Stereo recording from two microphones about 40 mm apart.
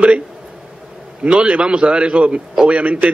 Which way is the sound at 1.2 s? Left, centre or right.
Right.